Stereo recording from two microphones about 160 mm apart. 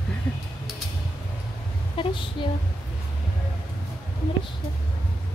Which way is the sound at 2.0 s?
30° left (ahead or behind).